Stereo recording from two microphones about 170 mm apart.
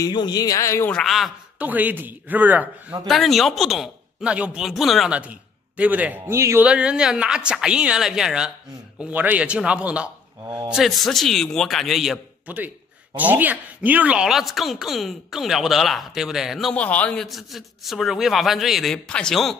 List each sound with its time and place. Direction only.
0.0 s speech: 25° left (ahead or behind)
0.9 s a man's voice: centre (ahead or behind)
3.1 s a man's voice: centre (ahead or behind)